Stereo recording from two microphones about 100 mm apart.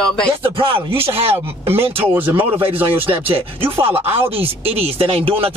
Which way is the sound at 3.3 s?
65° right (ahead or behind).